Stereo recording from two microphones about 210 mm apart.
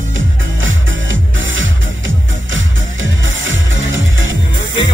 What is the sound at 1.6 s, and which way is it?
Music, 65° right (ahead or behind).